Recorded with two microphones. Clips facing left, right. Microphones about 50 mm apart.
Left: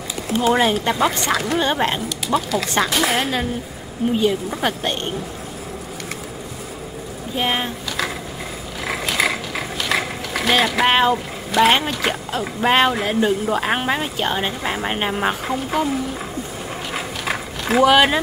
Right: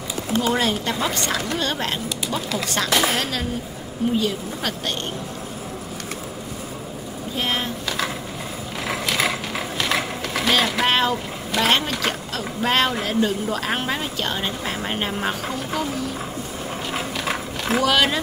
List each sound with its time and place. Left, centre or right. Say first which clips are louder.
0.4 s speech: left 5 dB; centre
7.3 s speech: left 3 dB; centre
9.3 s speech: left 1 dB; centre
16.9 s a sound: left 1 dB; centre